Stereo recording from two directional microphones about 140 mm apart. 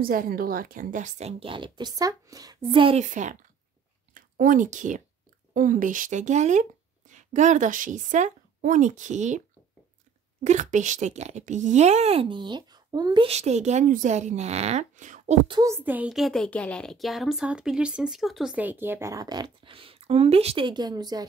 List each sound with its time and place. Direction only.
0.0 s a woman's voice: 90° right; by 1.3 s 60° right (ahead or behind)
1.4 s speech: 35° right (ahead or behind)
3.0 s speech: 60° right (ahead or behind)
4.1 s speech: 75° right (ahead or behind); by 9.4 s 60° right (ahead or behind)
10.4 s speech: 60° right (ahead or behind); by 13.3 s 30° right (ahead or behind)
13.3 s speech: 55° right (ahead or behind)
15.6 s a child's voice: 15° right (ahead or behind)